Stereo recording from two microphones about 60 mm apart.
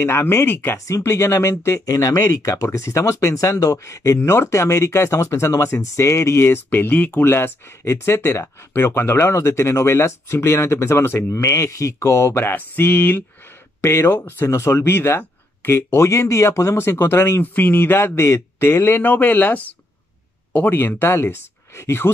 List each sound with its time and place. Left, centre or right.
0.1 s speech: left
0.7 s speech: left
1.9 s speech: left
4.2 s speech: left
7.2 s speech: left
11.2 s speech: left
12.4 s speech: left
13.7 s speech: left
15.0 s speech: left
16.7 s speech: left
18.1 s speech: left